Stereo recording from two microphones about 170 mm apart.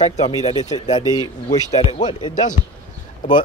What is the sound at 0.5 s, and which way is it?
Speech, 20° left (ahead or behind).